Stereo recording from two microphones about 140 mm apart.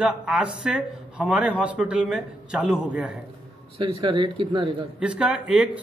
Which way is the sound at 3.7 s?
40° right (ahead or behind).